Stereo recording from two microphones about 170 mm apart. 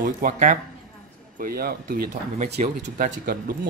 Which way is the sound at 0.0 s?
50° right (ahead or behind).